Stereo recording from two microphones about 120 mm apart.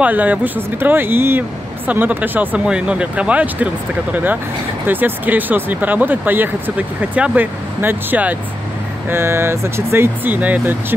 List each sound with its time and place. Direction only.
0.0 s speech: 15° right (ahead or behind)